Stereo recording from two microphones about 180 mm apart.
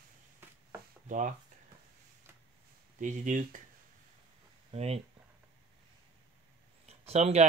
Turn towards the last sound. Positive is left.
turn(degrees=-35)  # may be behind; listen again after turning